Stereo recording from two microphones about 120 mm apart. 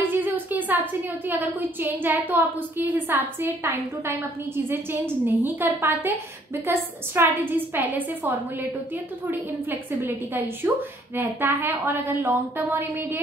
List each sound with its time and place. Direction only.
0.1 s a sound: 15° right (ahead or behind)
1.2 s a woman's voice: 15° right (ahead or behind)
9.3 s a woman's voice: 15° right (ahead or behind)